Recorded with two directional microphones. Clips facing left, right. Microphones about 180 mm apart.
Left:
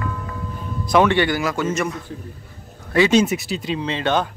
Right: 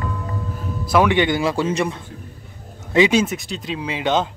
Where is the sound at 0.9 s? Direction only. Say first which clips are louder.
Left 1 dB; 5° right (ahead or behind).